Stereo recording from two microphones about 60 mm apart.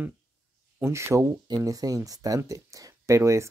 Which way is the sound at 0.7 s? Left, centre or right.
Right.